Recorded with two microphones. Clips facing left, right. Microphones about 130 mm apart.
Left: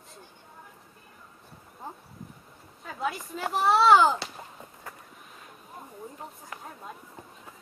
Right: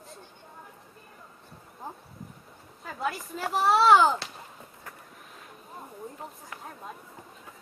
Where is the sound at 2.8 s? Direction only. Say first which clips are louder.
Even; centre (ahead or behind).